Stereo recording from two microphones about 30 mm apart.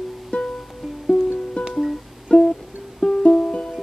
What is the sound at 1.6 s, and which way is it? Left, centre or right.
Music, left.